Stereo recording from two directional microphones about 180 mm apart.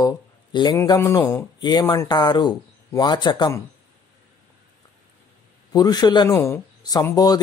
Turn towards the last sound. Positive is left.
turn(degrees=20)  # may be behind; listen again after turning